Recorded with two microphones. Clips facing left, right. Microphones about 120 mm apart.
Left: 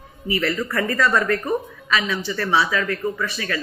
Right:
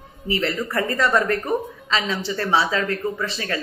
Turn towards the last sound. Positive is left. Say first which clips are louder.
# even
turn(degrees=-25)  # may be behind; listen again after turning